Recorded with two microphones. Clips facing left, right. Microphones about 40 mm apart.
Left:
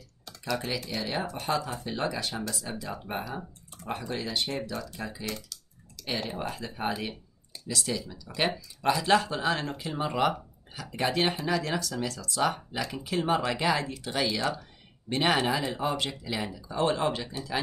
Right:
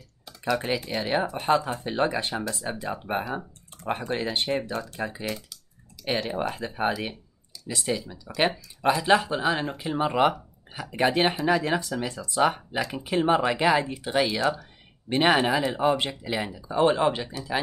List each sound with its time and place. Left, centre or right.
0.5 s speech: right
5.2 s typing: centre
6.0 s speech: right